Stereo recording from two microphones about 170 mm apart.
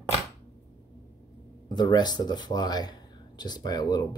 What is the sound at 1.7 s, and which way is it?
Speech, 25° left (ahead or behind).